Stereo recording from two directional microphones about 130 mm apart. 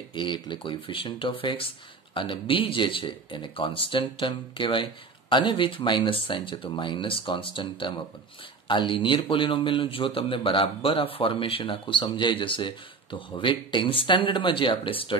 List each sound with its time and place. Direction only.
0.1 s a man's voice: 40° left (ahead or behind)